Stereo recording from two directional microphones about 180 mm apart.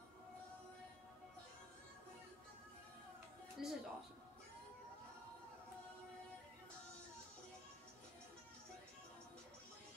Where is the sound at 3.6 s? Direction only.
Centre (ahead or behind).